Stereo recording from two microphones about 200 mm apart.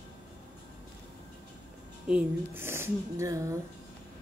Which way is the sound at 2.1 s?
5° right (ahead or behind).